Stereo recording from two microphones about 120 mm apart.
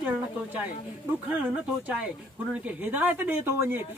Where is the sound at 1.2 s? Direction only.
10° right (ahead or behind).